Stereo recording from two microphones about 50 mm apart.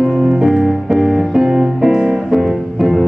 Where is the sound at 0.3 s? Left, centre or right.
Centre.